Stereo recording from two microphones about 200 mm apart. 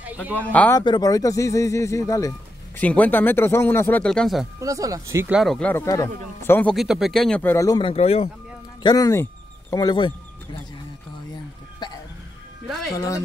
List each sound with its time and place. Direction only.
0.0 s a man's voice: 5° right (ahead or behind)
0.3 s speech: 5° left (ahead or behind)
0.7 s speech: 20° left (ahead or behind); by 4.5 s centre (ahead or behind)
4.6 s speech: 15° right (ahead or behind); by 6.7 s 10° left (ahead or behind)
6.7 s speech: centre (ahead or behind); by 7.9 s 20° left (ahead or behind)
7.9 s speech: 30° left (ahead or behind)
8.8 s speech: 15° left (ahead or behind)
11.8 s a sound: 20° left (ahead or behind)
12.6 s music: centre (ahead or behind)
12.9 s speech: 15° left (ahead or behind)